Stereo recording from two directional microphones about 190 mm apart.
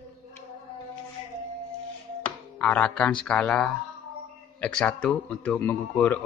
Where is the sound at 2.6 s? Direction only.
5° left (ahead or behind).